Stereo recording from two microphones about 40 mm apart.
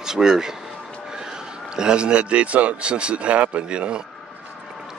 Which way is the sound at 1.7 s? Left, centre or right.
Right.